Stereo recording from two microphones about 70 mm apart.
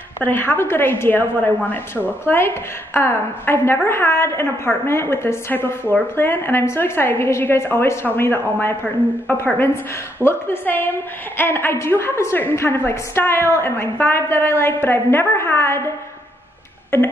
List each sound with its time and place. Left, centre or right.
0.2 s a woman's voice: left